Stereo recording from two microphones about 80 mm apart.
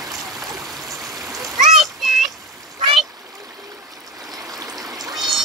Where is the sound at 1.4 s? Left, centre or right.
Centre.